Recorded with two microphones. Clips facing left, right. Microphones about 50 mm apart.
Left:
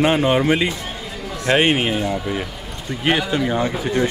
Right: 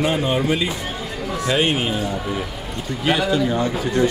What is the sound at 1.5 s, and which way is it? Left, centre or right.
Speech, left.